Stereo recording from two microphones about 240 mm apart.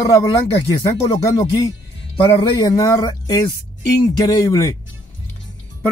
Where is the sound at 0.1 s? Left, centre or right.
Centre.